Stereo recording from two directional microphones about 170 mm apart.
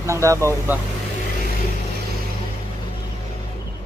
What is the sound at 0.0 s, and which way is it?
Speech, 15° right (ahead or behind).